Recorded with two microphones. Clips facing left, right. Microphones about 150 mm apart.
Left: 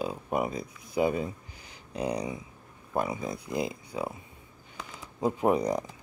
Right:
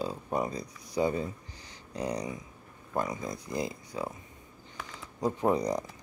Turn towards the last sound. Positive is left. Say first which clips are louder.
# left 2 dB
turn(degrees=10)  # may be behind; listen again after turning